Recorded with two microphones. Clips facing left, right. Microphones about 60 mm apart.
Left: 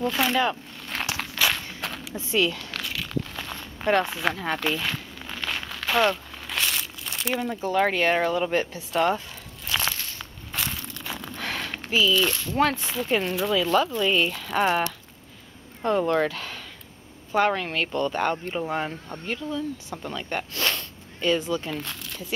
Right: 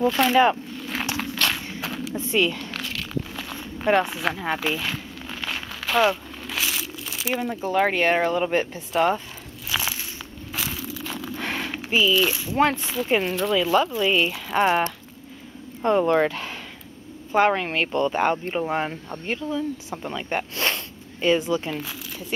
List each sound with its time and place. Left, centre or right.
0.0 s speech: centre
0.7 s a sound: centre
8.7 s speech: centre
9.7 s walk: centre
10.5 s a sound: centre
12.7 s speech: centre
15.8 s speech: centre